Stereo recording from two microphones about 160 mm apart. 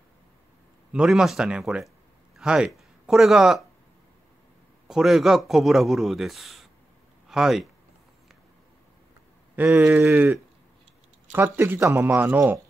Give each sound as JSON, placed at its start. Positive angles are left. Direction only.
{"t": 0.9, "sound": "a man's voice", "side_deg": -5}
{"t": 4.8, "sound": "a man's voice", "side_deg": 0}
{"t": 9.6, "sound": "speech", "side_deg": -15}